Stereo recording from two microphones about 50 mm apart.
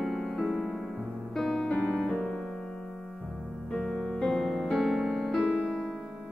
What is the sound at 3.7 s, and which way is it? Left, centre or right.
Music, centre.